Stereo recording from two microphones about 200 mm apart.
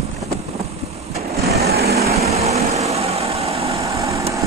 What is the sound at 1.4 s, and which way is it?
Light engine, 50° right (ahead or behind).